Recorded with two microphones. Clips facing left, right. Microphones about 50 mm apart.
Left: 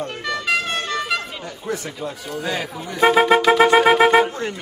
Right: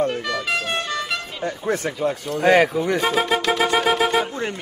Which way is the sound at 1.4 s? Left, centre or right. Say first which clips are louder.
Right 5 dB; right.